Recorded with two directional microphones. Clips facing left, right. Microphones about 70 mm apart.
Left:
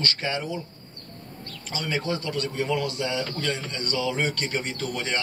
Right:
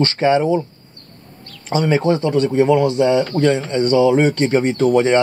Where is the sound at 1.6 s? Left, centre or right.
Right.